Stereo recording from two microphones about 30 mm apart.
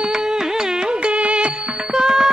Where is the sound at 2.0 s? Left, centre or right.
Centre.